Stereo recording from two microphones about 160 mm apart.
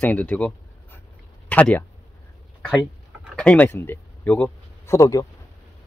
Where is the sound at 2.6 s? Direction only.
Centre (ahead or behind); by 5.3 s 20° left (ahead or behind).